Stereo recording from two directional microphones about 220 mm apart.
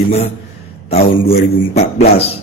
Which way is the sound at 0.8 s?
30° left (ahead or behind).